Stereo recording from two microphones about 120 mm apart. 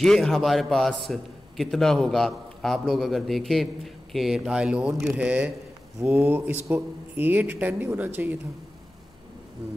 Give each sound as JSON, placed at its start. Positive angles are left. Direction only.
{"t": 0.0, "sound": "a man's voice", "side_deg": 5}